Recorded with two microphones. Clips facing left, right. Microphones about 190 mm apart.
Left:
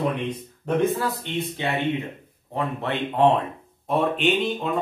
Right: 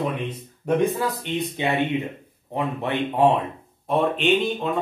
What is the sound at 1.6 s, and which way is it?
Speech, 20° right (ahead or behind).